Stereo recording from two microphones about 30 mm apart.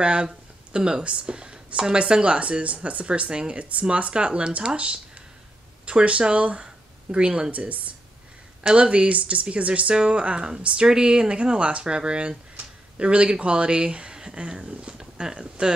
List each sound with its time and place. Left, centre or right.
0.0 s speech: right
0.7 s speech: right
3.3 s speech: right
3.5 s speech: right
4.1 s speech: right
6.6 s a sound: right
7.5 s speech: right
8.6 s speech: right
10.8 s speech: right
12.9 s speech: right
15.0 s a sound: right
15.3 s speech: right